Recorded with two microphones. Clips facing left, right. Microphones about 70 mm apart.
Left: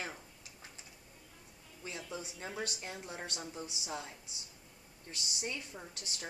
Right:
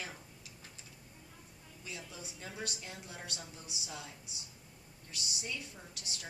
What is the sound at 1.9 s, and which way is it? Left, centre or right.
A woman's voice, left.